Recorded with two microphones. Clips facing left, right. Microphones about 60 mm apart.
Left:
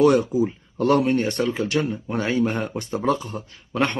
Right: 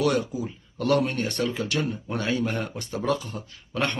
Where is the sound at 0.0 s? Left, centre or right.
Left.